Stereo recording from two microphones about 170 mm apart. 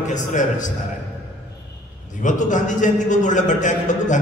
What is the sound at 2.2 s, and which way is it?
A man's voice, 45° left (ahead or behind).